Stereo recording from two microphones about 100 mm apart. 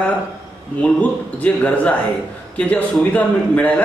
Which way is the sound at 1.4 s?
15° left (ahead or behind).